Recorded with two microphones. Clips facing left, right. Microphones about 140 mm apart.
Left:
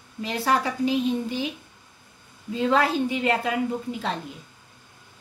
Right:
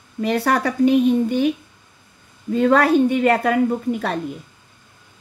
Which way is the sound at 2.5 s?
60° right (ahead or behind).